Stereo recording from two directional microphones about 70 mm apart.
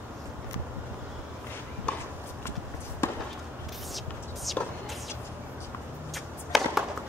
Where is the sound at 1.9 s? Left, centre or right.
Centre.